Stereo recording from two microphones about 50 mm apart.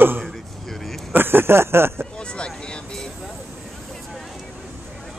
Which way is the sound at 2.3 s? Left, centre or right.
Centre.